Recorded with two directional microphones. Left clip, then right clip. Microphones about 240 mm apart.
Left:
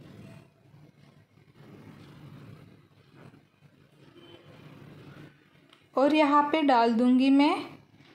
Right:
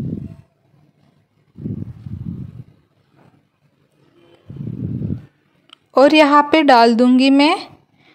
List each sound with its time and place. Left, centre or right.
5.7 s a woman's voice: right